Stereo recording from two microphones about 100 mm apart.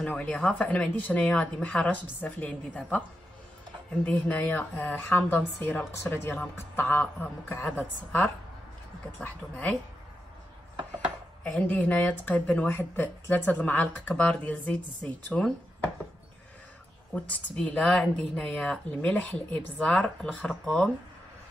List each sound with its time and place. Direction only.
0.0 s speech: 15° left (ahead or behind)
4.0 s a woman's voice: 15° left (ahead or behind)
11.4 s speech: 15° left (ahead or behind)
17.1 s speech: 10° left (ahead or behind)